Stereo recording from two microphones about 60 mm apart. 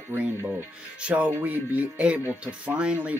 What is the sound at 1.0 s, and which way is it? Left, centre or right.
Speech, right.